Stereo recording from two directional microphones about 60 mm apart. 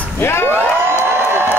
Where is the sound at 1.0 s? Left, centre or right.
Right.